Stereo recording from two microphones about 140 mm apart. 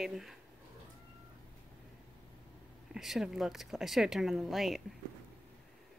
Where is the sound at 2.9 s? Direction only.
5° right (ahead or behind).